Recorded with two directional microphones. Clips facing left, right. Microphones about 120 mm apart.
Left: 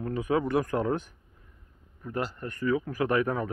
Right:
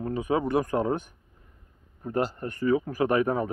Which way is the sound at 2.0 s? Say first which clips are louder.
Right 5 dB; 35° right (ahead or behind).